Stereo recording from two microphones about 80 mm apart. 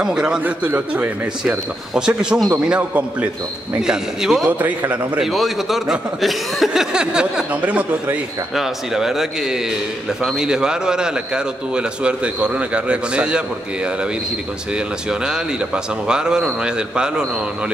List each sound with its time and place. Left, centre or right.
0.0 s a man's voice: centre
0.4 s a man's voice: right
1.4 s a man's voice: centre
4.5 s a man's voice: right
5.2 s a man's voice: centre
8.5 s a man's voice: centre
14.7 s a man's voice: centre